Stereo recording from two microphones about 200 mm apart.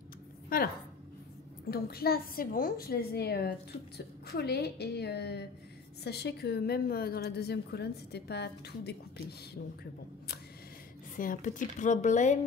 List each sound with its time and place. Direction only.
1.7 s a woman's voice: 50° left (ahead or behind)
11.1 s speech: 40° left (ahead or behind)